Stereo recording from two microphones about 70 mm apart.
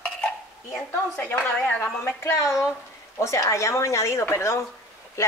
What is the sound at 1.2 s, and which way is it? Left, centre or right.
Speech, left.